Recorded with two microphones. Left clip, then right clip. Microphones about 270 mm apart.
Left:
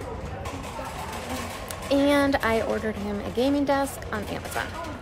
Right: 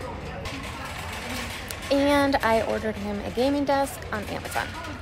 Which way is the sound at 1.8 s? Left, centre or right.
Centre.